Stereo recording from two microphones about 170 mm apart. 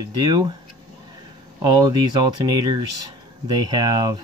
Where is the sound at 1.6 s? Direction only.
25° right (ahead or behind).